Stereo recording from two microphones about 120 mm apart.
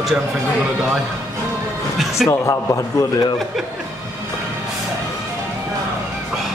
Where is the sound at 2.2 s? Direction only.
25° left (ahead or behind).